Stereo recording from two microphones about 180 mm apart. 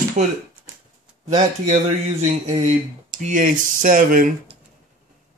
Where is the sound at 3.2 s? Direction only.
45° right (ahead or behind).